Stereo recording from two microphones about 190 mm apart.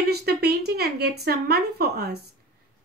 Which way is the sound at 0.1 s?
55° right (ahead or behind).